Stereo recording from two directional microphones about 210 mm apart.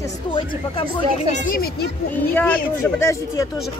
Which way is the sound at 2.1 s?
10° left (ahead or behind).